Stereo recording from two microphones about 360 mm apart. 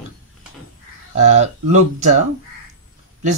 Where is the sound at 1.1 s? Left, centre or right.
Centre.